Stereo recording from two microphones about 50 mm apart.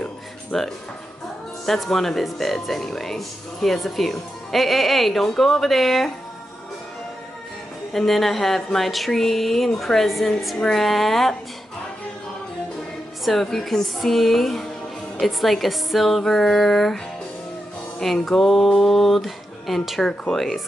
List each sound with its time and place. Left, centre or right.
0.0 s music: centre
1.7 s speech: centre
7.9 s speech: centre
13.2 s speech: centre
18.0 s speech: centre